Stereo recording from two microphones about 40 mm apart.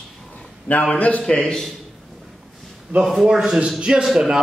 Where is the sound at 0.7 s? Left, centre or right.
Left.